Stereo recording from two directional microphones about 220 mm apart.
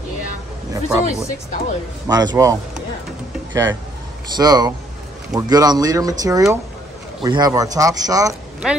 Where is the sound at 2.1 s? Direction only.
15° right (ahead or behind).